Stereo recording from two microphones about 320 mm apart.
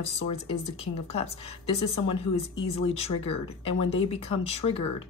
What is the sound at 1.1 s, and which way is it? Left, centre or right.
Speech, centre.